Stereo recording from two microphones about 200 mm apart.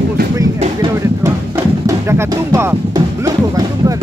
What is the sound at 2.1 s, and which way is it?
Music, 15° right (ahead or behind).